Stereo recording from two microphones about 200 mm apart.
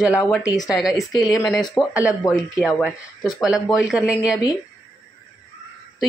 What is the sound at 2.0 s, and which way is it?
Speech, 15° left (ahead or behind).